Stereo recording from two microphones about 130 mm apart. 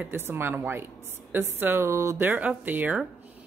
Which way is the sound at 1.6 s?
15° right (ahead or behind).